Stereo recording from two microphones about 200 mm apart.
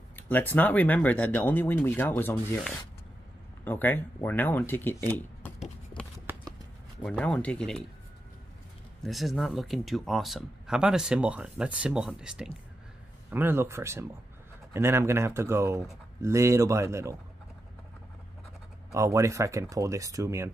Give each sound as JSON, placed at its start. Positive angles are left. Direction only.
{"t": 0.1, "sound": "speech", "side_deg": 10}
{"t": 6.3, "sound": "clip-clop", "side_deg": -10}
{"t": 7.0, "sound": "speech", "side_deg": 5}
{"t": 9.0, "sound": "speech", "side_deg": 0}
{"t": 18.9, "sound": "speech", "side_deg": -15}